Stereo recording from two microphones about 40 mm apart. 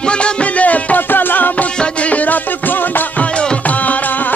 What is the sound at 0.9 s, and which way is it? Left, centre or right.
Music, left.